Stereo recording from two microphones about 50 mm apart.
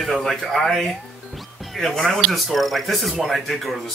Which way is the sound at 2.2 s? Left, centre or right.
Centre.